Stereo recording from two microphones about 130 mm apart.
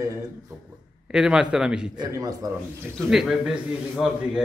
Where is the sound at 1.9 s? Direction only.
30° right (ahead or behind).